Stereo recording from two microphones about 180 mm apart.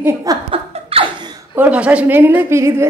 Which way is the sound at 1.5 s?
10° right (ahead or behind).